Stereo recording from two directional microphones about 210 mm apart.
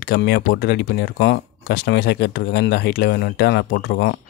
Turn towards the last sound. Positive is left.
turn(degrees=50)  # may be behind; listen again after turning